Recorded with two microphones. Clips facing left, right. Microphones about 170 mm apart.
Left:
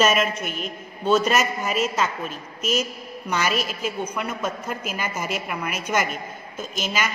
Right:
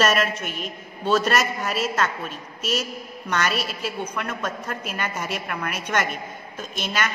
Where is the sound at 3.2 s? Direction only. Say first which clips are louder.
Left 1 dB; 5° left (ahead or behind).